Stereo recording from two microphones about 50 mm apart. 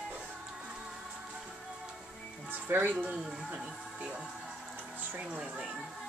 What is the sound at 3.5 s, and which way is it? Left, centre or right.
Music, centre.